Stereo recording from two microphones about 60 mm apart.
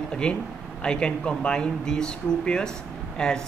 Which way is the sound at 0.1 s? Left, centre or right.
Centre.